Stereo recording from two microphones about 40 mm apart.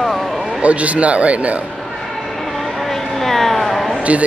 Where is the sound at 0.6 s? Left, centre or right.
Right.